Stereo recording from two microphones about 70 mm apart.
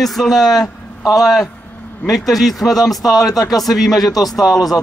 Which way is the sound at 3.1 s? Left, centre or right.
Left.